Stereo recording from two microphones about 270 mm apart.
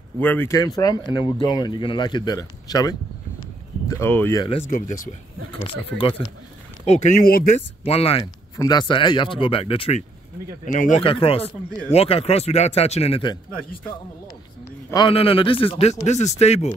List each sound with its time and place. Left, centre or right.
0.2 s speech: centre
14.9 s speech: centre